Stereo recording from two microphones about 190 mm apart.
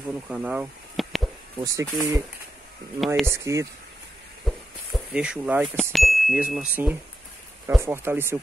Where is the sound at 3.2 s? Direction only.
15° right (ahead or behind).